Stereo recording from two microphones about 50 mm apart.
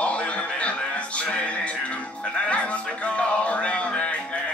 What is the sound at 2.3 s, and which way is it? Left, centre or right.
Music, left.